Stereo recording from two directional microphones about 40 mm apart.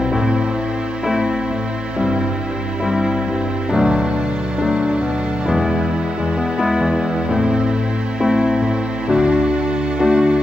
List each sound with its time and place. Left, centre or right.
1.0 s music: centre
2.9 s music: centre